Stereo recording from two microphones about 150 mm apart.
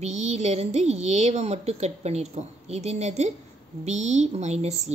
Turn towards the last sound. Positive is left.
turn(degrees=-45)  # may be behind; listen again after turning